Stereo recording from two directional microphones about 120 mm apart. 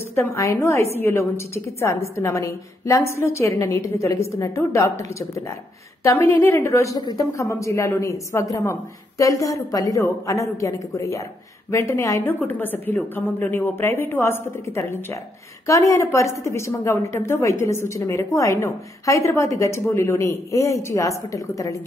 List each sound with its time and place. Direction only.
0.1 s a woman's voice: 25° left (ahead or behind)